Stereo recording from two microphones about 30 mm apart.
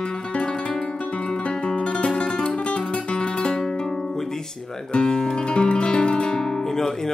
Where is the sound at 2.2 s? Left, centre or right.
Left.